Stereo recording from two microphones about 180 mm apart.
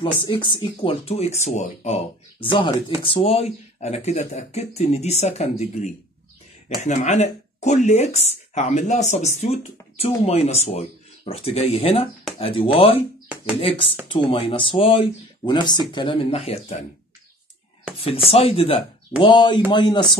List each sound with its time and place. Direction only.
0.2 s speech: 30° left (ahead or behind)
6.8 s speech: 40° left (ahead or behind)
18.0 s speech: 30° left (ahead or behind)